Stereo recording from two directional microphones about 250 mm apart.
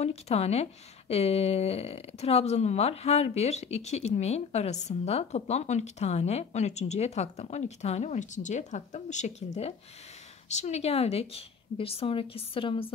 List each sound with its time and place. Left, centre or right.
0.0 s speech: left